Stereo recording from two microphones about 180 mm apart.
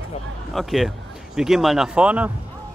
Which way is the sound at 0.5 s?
Centre (ahead or behind).